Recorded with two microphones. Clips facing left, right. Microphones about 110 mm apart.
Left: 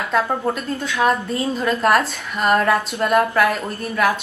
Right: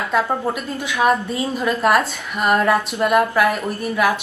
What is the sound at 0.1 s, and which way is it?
A woman's voice, 5° right (ahead or behind).